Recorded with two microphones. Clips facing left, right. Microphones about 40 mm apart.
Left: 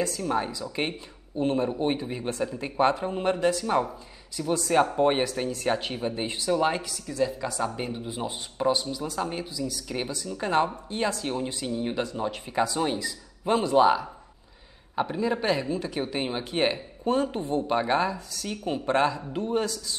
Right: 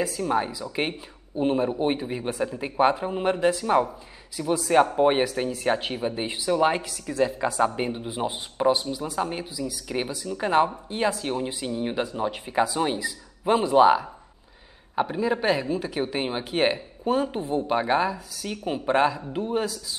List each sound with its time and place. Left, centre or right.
0.0 s speech: centre